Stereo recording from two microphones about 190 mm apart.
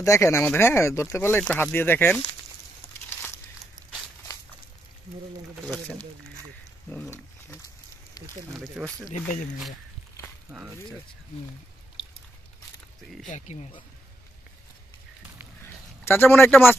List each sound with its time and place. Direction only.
0.0 s speech: 15° left (ahead or behind)
8.5 s speech: centre (ahead or behind)
13.3 s speech: 35° left (ahead or behind)
16.0 s speech: 10° left (ahead or behind)